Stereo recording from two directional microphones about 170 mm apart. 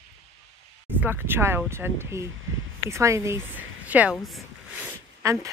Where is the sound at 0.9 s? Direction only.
10° right (ahead or behind).